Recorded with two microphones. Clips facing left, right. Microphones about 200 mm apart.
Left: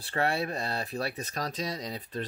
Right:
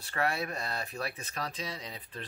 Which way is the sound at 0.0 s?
30° left (ahead or behind).